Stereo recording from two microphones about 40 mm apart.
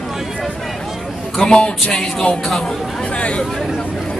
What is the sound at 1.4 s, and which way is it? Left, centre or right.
Speech, left.